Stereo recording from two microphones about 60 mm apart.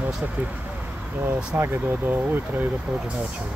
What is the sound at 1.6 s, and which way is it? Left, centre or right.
Speech, right.